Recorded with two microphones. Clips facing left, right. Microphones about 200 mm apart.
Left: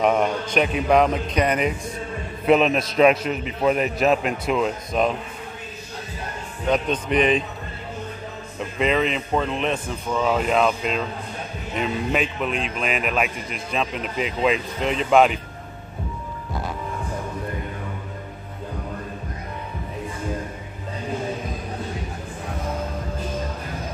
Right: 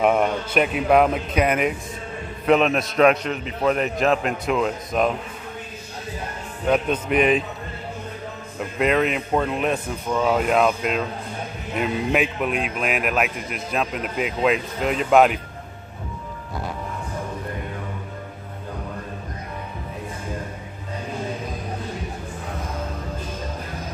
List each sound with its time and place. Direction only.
0.0 s speech: 5° right (ahead or behind)
6.7 s speech: 5° right (ahead or behind)
8.5 s speech: 5° right (ahead or behind)